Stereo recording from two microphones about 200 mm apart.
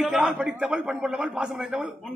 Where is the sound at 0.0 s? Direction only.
5° right (ahead or behind).